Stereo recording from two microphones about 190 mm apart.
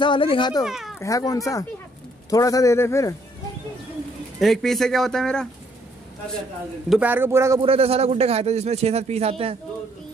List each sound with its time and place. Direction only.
0.0 s speech: 25° left (ahead or behind)
0.7 s speech: centre (ahead or behind)
0.9 s a man's voice: 15° left (ahead or behind)
4.4 s speech: centre (ahead or behind)
6.9 s speech: 10° right (ahead or behind)
7.6 s speech: 30° right (ahead or behind)